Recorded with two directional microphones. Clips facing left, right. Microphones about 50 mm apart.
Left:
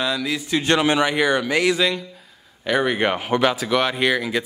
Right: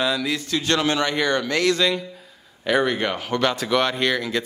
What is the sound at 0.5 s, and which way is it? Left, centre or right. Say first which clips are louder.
Speech: left 4 dB; left.